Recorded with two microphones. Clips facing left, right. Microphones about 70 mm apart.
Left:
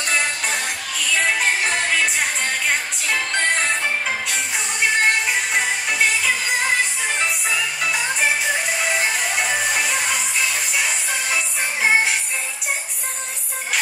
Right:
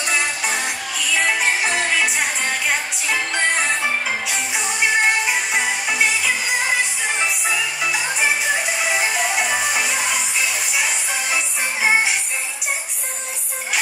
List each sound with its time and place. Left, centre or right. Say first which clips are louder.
0.0 s music: even; centre